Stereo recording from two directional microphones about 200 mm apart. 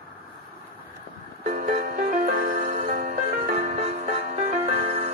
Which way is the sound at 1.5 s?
50° right (ahead or behind).